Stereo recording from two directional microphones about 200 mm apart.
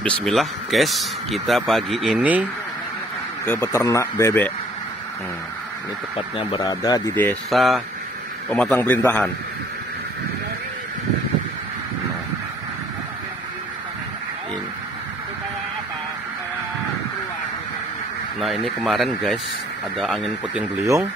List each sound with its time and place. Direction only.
0.0 s speech: 5° left (ahead or behind)
3.4 s speech: 10° left (ahead or behind)
6.1 s speech: 25° left (ahead or behind)
7.5 s speech: centre (ahead or behind)
18.4 s a man's voice: centre (ahead or behind)